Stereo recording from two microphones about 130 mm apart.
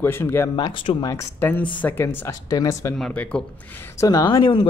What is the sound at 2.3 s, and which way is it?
Speech, 30° left (ahead or behind).